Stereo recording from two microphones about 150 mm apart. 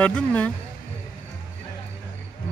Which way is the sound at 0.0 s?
10° left (ahead or behind).